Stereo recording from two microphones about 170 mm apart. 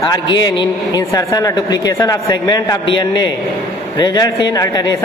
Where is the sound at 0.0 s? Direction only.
20° left (ahead or behind).